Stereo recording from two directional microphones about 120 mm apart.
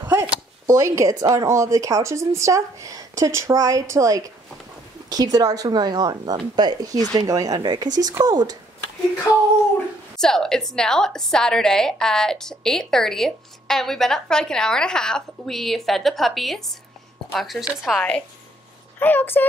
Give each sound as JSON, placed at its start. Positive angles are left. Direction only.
{"t": 0.0, "sound": "a sound", "side_deg": -20}
{"t": 1.3, "sound": "speech", "side_deg": -25}
{"t": 10.1, "sound": "a woman's voice", "side_deg": 5}